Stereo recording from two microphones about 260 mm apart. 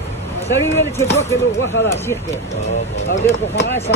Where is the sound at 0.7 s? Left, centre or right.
Centre.